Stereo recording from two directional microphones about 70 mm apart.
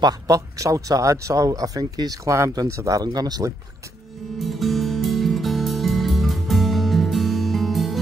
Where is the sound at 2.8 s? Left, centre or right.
Right.